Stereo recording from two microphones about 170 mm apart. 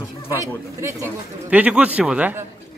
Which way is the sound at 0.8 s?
15° right (ahead or behind).